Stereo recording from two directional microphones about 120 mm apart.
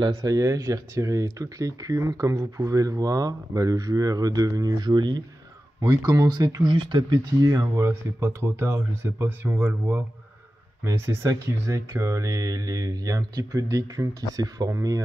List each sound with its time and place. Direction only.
0.1 s speech: 25° right (ahead or behind)